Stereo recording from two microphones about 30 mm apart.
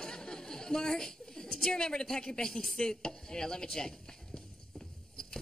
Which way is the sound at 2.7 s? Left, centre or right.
Left.